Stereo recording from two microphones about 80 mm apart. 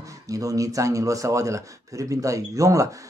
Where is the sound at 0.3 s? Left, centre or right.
Right.